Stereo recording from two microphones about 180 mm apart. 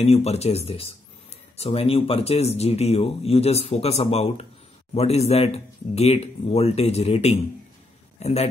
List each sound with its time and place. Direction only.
0.0 s a man's voice: 35° left (ahead or behind)